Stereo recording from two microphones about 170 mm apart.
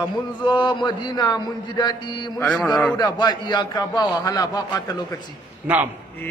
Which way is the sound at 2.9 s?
25° left (ahead or behind).